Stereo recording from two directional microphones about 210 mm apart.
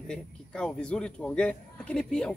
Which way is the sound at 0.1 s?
5° left (ahead or behind).